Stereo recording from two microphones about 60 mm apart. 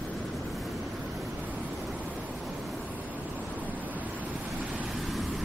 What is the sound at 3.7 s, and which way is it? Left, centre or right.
Waves, right.